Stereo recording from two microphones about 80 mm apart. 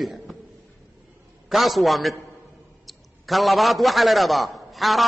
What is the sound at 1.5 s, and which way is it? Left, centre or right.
A man's voice, centre.